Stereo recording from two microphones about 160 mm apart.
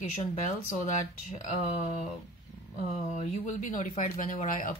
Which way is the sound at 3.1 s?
45° left (ahead or behind).